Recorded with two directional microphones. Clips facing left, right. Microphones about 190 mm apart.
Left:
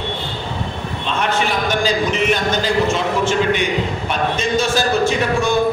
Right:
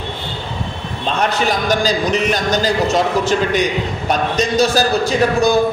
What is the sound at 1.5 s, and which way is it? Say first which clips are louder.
Speech: right 2 dB; 40° right (ahead or behind).